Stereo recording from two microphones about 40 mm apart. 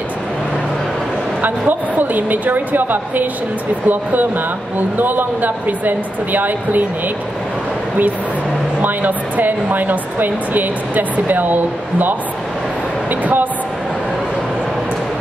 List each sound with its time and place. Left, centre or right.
1.4 s speech: right
8.8 s speech: right